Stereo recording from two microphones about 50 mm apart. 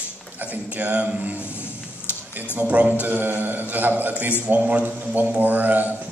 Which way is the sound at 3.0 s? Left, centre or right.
Right.